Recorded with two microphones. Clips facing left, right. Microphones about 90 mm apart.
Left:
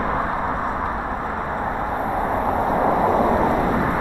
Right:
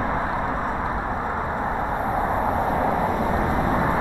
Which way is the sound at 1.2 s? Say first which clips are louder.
Left 1 dB; centre (ahead or behind).